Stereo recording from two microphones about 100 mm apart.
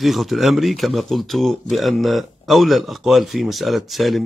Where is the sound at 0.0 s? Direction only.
Centre (ahead or behind).